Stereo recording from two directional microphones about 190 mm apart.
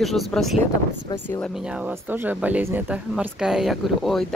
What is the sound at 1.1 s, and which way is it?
Speech, 20° left (ahead or behind).